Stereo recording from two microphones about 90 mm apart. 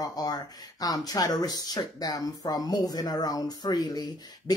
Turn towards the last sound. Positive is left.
turn(degrees=45)  # may be behind; listen again after turning